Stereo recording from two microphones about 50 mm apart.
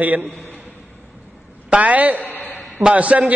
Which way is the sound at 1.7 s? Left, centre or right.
Right.